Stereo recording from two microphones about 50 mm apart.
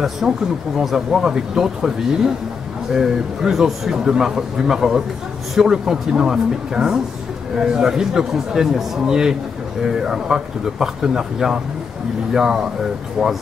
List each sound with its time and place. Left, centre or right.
0.2 s speech: centre